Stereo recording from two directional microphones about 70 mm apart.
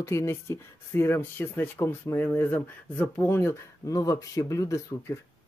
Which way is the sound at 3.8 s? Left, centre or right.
Left.